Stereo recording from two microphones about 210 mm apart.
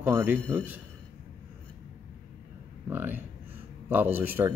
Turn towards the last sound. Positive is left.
turn(degrees=-10)  # may be behind; listen again after turning